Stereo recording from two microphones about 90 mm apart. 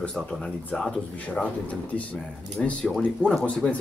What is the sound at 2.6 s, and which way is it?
A man's voice, 5° left (ahead or behind).